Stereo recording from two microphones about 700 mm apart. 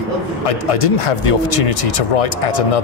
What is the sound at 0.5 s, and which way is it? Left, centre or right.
Speech, left.